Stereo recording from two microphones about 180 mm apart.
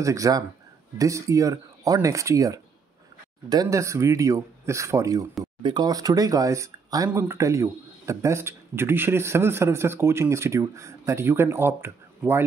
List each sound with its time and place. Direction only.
0.0 s a man's voice: 20° right (ahead or behind)